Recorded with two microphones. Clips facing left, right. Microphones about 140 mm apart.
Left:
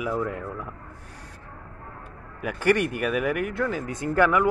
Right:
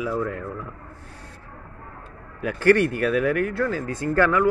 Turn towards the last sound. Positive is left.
turn(degrees=15)  # may be behind; listen again after turning